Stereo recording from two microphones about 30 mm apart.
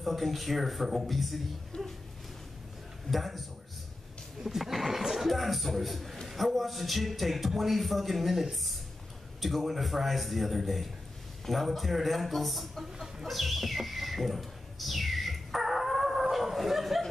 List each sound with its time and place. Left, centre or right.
0.0 s a man's voice: centre
1.7 s speech: left
3.1 s a man's voice: centre
4.4 s a sound: centre
5.3 s a man's voice: centre
13.0 s a sound: centre